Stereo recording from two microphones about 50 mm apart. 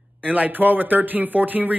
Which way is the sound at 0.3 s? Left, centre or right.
Right.